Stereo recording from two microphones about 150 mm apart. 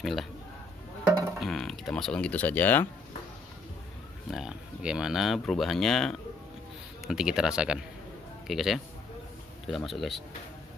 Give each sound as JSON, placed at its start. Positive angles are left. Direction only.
{"t": 0.0, "sound": "speech", "side_deg": 0}
{"t": 1.4, "sound": "speech", "side_deg": 0}
{"t": 4.3, "sound": "speech", "side_deg": -5}